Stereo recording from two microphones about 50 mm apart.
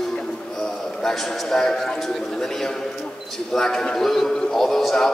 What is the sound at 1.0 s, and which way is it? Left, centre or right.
A man's voice, centre.